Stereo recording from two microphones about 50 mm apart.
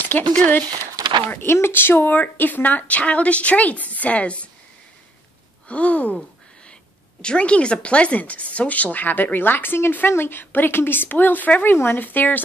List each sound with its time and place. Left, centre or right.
0.0 s speech: left
1.3 s speech: left
5.7 s gasp: left
7.2 s speech: left